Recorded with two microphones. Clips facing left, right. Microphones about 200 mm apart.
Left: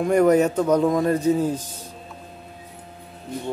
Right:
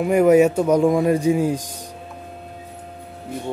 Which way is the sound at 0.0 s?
10° right (ahead or behind).